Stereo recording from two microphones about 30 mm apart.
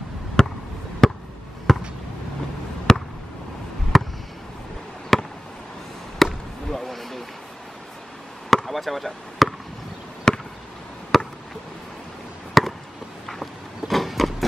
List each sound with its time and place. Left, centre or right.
0.4 s a sound: left
1.0 s basketball bounce: centre
2.9 s basketball bounce: centre
3.9 s a sound: centre
5.1 s fireworks: centre
6.2 s basketball bounce: centre
6.7 s a sound: centre
8.6 s basketball bounce: centre
10.3 s basketball bounce: left
11.1 s chop: centre
12.6 s chop: centre
13.8 s a sound: centre